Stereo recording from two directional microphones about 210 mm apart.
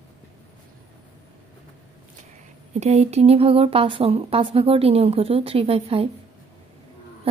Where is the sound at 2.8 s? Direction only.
30° right (ahead or behind).